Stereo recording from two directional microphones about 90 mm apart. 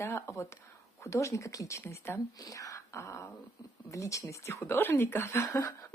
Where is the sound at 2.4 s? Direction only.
40° left (ahead or behind).